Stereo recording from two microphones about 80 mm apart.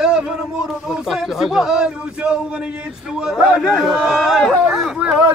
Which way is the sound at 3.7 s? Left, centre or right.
Centre.